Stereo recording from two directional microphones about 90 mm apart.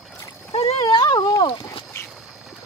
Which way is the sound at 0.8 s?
55° left (ahead or behind).